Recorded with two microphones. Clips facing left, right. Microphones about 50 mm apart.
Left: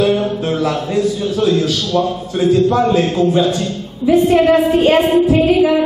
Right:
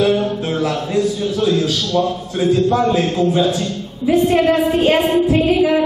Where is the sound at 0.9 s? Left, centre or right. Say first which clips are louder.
Even; centre.